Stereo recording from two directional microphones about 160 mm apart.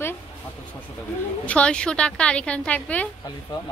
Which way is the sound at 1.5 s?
5° left (ahead or behind).